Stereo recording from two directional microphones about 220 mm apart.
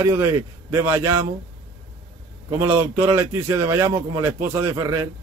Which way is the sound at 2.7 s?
10° right (ahead or behind).